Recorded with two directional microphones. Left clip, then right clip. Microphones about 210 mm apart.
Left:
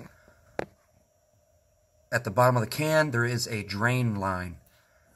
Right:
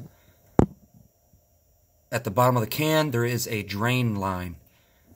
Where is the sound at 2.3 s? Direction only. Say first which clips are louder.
Right 2 dB; 5° right (ahead or behind).